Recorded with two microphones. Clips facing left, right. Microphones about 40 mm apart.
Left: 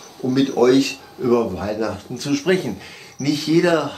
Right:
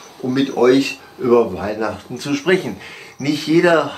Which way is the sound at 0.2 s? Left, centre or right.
Centre.